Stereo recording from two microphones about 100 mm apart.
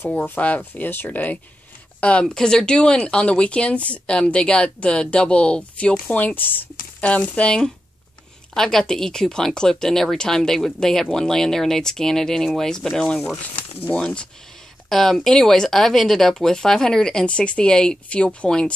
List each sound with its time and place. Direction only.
0.0 s speech: 20° left (ahead or behind)
13.7 s speech: 15° left (ahead or behind)
14.9 s speech: 5° left (ahead or behind)